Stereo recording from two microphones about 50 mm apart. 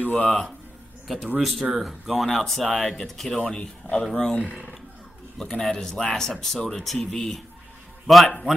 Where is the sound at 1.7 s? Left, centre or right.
Centre.